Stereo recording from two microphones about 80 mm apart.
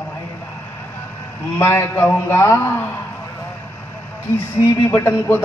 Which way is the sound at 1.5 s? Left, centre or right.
Left.